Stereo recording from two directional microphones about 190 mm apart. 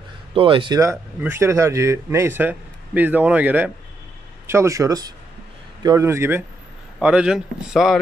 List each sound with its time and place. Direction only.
0.3 s a man's voice: 30° right (ahead or behind); by 8.0 s centre (ahead or behind)